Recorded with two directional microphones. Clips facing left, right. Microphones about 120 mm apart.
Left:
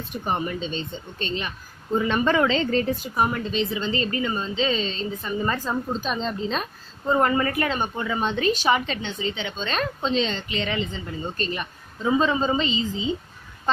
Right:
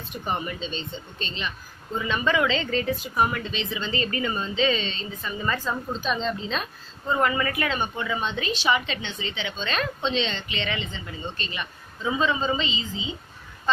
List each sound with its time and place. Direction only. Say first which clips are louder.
0.6 s a woman's voice: left 3 dB; 45° left (ahead or behind)